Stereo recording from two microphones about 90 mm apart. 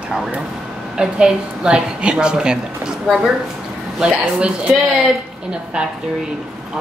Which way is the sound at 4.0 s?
10° right (ahead or behind).